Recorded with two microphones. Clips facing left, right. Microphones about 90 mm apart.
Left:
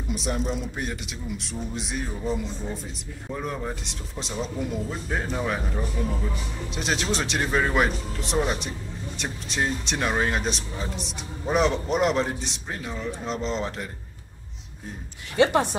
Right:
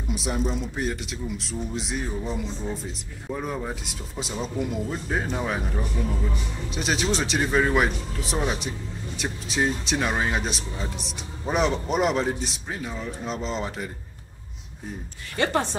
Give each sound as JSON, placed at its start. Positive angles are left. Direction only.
{"t": 0.1, "sound": "speech", "side_deg": 0}
{"t": 15.3, "sound": "speech", "side_deg": 15}